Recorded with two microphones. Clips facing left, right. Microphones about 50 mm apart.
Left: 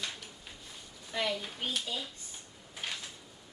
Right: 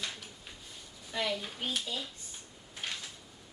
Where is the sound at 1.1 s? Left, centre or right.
Centre.